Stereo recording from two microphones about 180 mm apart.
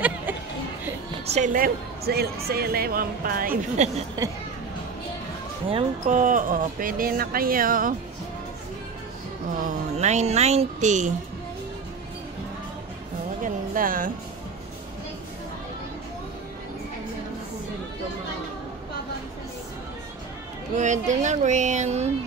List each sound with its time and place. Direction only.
1.2 s a woman's voice: 40° right (ahead or behind)
5.7 s a woman's voice: 35° right (ahead or behind); by 7.9 s 50° right (ahead or behind)
9.7 s speech: 40° right (ahead or behind)
13.4 s music: 50° right (ahead or behind)
20.7 s speech: 40° right (ahead or behind)